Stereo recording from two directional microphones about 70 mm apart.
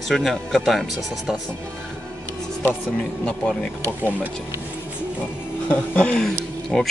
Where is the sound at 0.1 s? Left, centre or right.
Centre.